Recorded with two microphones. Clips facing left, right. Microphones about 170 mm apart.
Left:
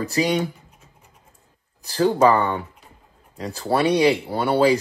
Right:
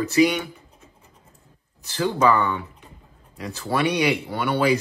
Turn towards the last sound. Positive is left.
turn(degrees=30)  # may be behind; listen again after turning